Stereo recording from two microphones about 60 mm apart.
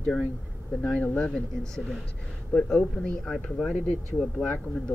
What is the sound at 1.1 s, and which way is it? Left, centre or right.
Speech, centre.